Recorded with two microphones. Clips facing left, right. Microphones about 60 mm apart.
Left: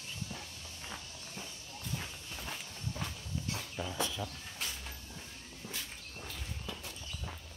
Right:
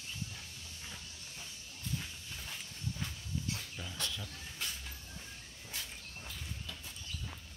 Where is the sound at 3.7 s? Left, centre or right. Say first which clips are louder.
Left 6 dB; centre.